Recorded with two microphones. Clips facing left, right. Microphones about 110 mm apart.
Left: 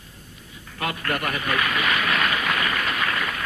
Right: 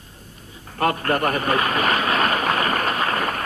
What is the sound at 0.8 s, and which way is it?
A man's voice, 40° right (ahead or behind).